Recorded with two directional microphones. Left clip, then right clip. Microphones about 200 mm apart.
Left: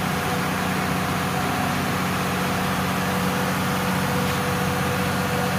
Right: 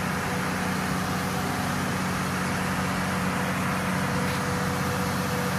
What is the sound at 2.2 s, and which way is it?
Vehicle, 45° left (ahead or behind).